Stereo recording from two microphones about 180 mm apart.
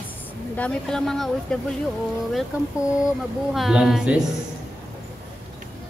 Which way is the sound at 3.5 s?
Centre (ahead or behind).